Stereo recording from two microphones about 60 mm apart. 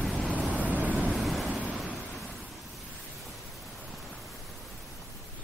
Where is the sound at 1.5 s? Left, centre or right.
Right.